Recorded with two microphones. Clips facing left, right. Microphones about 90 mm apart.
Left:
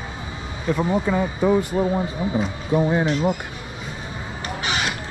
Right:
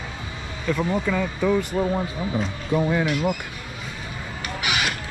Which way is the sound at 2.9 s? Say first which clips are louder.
Left 2 dB; 35° left (ahead or behind).